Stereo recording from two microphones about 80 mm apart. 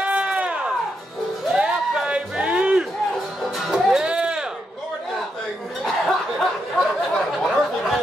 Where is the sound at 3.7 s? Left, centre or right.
Centre.